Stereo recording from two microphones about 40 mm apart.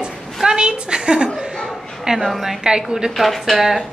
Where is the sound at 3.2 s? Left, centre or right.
Centre.